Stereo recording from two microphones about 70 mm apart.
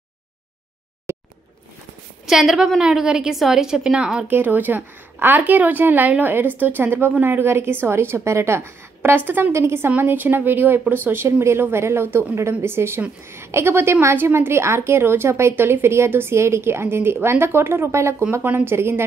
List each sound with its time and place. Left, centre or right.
1.1 s a sound: right
2.2 s a woman's voice: centre
4.3 s a woman's voice: right
9.5 s a woman's voice: right